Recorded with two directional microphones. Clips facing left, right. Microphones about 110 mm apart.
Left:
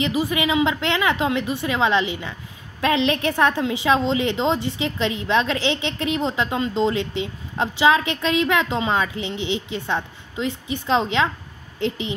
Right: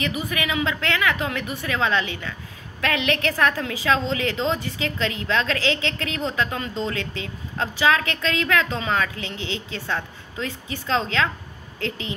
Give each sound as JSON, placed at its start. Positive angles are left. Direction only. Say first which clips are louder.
{"t": 0.0, "sound": "a woman's voice", "louder": "left 5 dB", "side_deg": 25}